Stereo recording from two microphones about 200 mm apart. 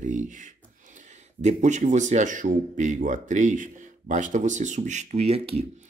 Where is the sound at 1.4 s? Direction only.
35° right (ahead or behind).